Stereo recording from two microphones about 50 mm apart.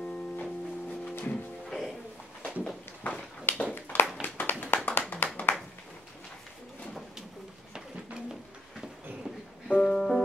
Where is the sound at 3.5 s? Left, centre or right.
Left.